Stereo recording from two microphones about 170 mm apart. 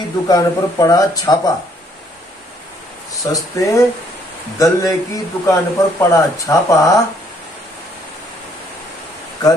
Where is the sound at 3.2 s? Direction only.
20° left (ahead or behind).